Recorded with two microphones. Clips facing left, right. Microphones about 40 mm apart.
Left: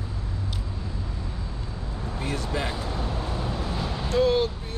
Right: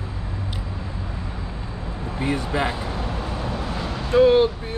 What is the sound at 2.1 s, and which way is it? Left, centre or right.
Speech, right.